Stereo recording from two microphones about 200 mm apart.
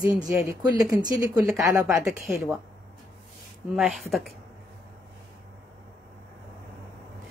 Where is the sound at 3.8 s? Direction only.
Centre (ahead or behind).